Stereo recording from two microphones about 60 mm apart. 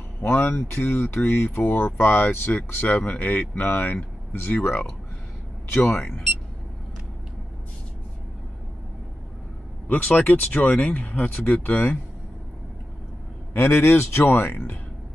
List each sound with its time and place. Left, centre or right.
0.2 s speech: left
9.8 s speech: left
13.5 s speech: left